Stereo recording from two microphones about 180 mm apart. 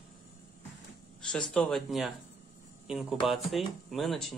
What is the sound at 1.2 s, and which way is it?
Speech, 5° left (ahead or behind).